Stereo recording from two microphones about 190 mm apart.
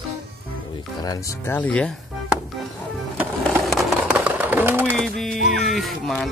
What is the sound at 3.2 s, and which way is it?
Sewing machine, centre (ahead or behind).